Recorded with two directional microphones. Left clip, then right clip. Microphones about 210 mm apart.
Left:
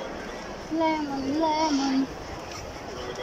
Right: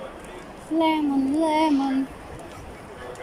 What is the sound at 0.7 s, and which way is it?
Speech, 15° right (ahead or behind).